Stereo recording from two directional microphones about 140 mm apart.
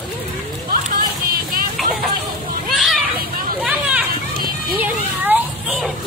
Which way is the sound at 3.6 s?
10° right (ahead or behind).